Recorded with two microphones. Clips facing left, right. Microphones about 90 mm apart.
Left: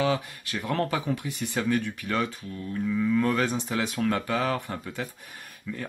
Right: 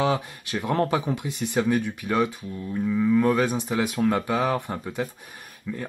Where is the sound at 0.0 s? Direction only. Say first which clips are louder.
Right 2 dB; 20° right (ahead or behind).